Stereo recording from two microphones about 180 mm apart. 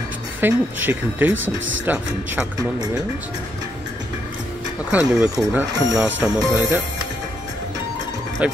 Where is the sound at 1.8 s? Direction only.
10° right (ahead or behind).